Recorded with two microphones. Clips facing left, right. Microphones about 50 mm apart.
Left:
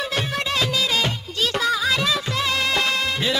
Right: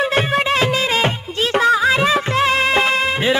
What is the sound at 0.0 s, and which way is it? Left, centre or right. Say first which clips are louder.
Music: right 8 dB; right.